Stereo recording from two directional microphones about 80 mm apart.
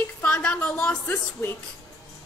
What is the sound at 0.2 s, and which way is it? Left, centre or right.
Speech, centre.